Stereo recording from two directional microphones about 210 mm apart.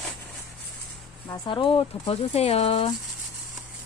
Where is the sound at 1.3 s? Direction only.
25° left (ahead or behind).